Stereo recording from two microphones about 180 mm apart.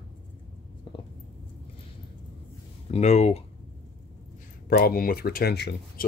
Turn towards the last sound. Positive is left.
turn(degrees=65)  # may be behind; listen again after turning